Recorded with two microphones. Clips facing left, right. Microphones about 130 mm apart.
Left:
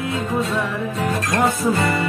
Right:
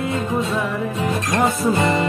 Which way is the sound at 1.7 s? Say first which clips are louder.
Right 2 dB; 20° right (ahead or behind).